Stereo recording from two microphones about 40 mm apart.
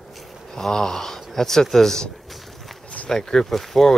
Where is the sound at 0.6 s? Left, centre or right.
Centre.